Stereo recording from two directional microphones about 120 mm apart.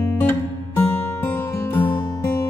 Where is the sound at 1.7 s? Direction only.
15° left (ahead or behind).